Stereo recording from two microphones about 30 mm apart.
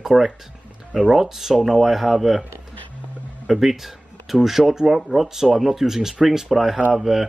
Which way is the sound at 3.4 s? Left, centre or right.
Centre.